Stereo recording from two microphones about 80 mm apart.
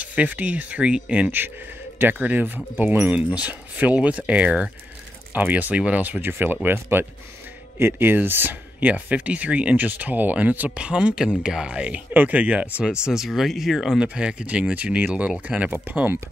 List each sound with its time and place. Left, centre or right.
0.0 s speech: centre
13.0 s speech: centre; by 16.2 s right